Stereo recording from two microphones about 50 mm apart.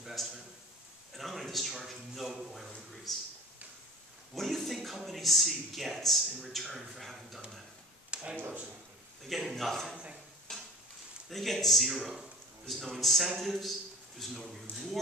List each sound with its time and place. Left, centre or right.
0.0 s a sound: centre
1.1 s a man's voice: centre
4.4 s a man's voice: centre
8.1 s a sound: right
9.2 s a man's voice: centre
10.5 s stir: centre
11.2 s a man's voice: centre